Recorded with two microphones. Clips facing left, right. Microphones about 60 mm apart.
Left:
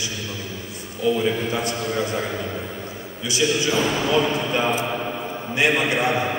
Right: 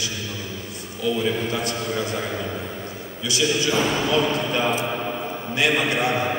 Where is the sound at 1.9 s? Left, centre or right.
Centre.